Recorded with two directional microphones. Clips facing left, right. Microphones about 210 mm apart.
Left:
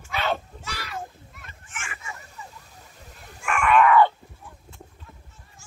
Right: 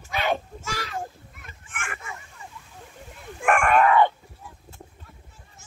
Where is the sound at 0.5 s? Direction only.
45° right (ahead or behind).